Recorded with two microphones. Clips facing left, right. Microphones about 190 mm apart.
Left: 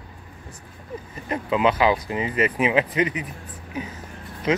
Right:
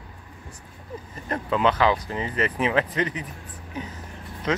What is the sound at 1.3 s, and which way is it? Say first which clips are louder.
Speech: left 2 dB; 10° left (ahead or behind).